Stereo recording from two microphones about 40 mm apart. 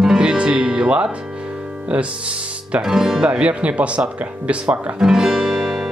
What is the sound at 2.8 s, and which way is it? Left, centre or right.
Speech, centre.